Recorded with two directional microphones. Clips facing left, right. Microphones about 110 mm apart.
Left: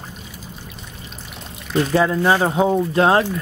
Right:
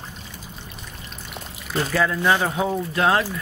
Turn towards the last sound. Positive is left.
turn(degrees=30)  # may be behind; listen again after turning